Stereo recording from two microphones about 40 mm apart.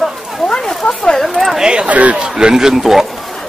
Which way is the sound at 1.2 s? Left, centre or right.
Centre.